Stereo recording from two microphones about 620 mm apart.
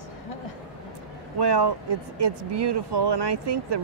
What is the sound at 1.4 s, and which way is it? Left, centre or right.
Speech, right.